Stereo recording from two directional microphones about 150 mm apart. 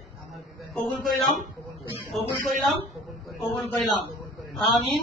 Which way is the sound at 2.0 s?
Centre (ahead or behind).